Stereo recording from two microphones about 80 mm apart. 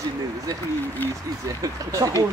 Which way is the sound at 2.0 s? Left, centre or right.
Right.